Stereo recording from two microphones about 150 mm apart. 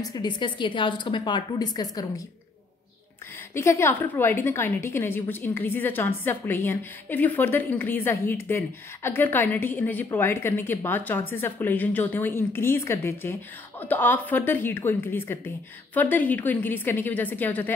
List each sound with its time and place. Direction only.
0.0 s a woman's voice: 25° left (ahead or behind)
3.5 s a woman's voice: 20° left (ahead or behind)